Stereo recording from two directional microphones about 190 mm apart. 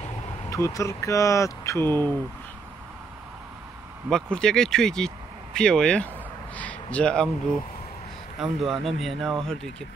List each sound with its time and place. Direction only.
0.5 s speech: 15° left (ahead or behind)
4.1 s speech: 5° left (ahead or behind)
8.4 s speech: centre (ahead or behind)